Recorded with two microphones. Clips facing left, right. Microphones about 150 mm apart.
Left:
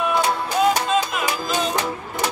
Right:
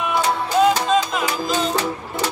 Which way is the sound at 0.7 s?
15° left (ahead or behind).